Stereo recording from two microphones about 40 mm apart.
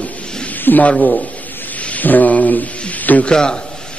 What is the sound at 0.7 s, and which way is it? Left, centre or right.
Speech, left.